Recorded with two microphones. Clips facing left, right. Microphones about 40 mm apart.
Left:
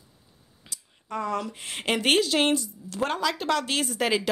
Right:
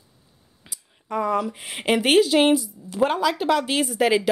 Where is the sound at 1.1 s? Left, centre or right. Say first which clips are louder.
Right 6 dB; centre.